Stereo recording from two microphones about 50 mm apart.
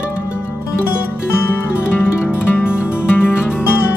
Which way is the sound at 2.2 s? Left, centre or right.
Left.